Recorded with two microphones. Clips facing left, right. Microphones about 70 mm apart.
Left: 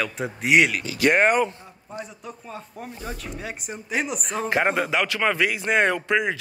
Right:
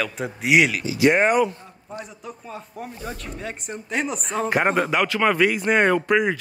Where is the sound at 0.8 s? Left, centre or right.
Left.